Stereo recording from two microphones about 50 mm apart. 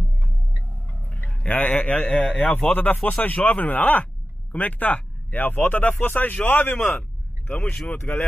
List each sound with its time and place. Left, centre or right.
1.1 s a man's voice: left
3.0 s speech: left
3.3 s speech: left